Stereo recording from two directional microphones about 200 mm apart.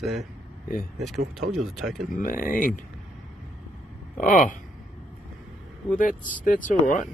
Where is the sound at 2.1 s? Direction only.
45° left (ahead or behind).